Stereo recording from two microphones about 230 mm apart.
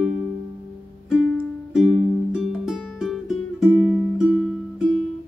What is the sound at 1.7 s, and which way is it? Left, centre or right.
Music, centre.